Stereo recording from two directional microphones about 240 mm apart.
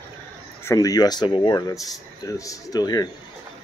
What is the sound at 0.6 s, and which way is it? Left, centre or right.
Speech, centre.